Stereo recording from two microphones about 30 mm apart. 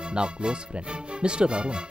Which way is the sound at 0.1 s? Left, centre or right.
Right.